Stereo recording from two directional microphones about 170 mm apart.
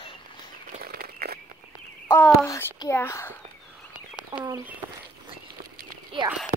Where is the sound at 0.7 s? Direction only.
60° right (ahead or behind).